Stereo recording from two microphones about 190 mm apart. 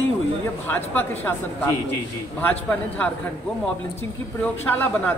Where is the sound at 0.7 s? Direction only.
10° left (ahead or behind).